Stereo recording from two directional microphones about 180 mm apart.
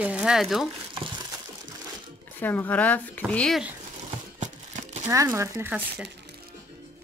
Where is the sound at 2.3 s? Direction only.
10° left (ahead or behind).